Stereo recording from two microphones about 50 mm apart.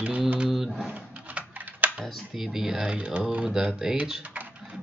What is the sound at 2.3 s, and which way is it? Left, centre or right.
Speech, centre.